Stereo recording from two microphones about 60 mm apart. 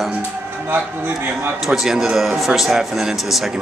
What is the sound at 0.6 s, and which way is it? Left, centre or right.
Speech, right.